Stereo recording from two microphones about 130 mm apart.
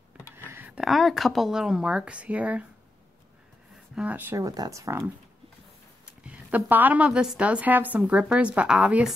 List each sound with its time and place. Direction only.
0.5 s a woman's voice: 10° right (ahead or behind)
3.9 s a woman's voice: 10° right (ahead or behind)
4.5 s speech: 25° right (ahead or behind)
6.2 s a woman's voice: 10° right (ahead or behind)